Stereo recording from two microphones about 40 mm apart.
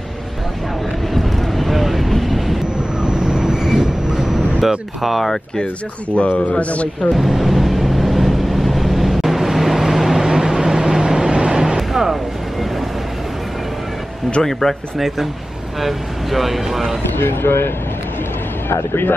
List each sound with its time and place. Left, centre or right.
1.1 s vehicle: centre
3.0 s vehicle: centre
6.2 s speech: left
7.1 s vehicle: centre
14.4 s speech: centre
15.0 s speech: centre
17.2 s speech: left
18.7 s speech: left